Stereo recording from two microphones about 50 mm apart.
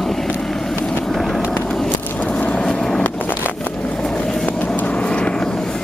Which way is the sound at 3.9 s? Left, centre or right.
Centre.